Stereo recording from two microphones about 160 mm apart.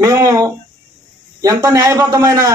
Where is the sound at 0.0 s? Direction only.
20° right (ahead or behind).